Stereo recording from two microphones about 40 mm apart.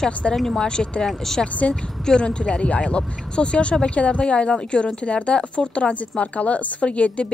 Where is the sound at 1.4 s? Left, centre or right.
Left.